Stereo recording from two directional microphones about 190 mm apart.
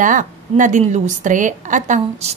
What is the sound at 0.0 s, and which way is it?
A woman's voice, 45° right (ahead or behind).